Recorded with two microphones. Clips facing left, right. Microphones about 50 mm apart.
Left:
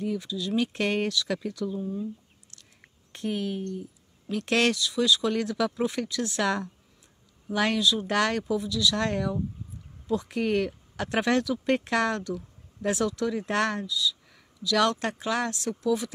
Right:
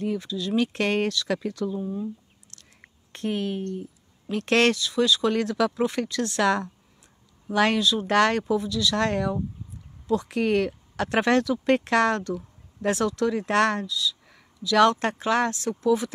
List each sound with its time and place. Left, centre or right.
0.0 s speech: right
0.7 s speech: right
2.5 s a sound: right
4.3 s speech: right
7.4 s speech: right
8.0 s speech: right
9.0 s speech: right
14.6 s speech: right